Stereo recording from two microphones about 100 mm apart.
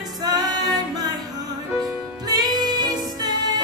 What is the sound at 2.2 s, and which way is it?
Music, 45° right (ahead or behind).